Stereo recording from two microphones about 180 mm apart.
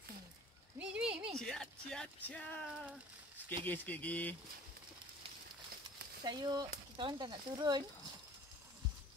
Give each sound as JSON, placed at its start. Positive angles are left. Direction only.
{"t": 0.7, "sound": "a sound", "side_deg": -5}
{"t": 1.4, "sound": "speech", "side_deg": 0}
{"t": 6.2, "sound": "speech", "side_deg": -20}